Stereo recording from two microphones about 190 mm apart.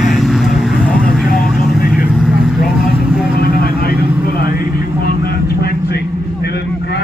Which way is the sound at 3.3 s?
55° left (ahead or behind).